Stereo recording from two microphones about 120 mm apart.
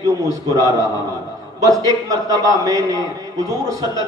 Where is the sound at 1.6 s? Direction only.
30° right (ahead or behind).